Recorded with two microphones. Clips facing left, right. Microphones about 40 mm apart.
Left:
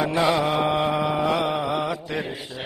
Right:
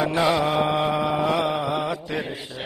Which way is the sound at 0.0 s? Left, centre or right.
Centre.